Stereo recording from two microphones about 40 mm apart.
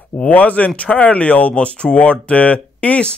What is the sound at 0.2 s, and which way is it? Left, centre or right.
Speech, left.